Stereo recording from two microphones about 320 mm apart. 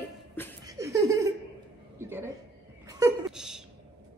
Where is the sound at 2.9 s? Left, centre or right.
Centre.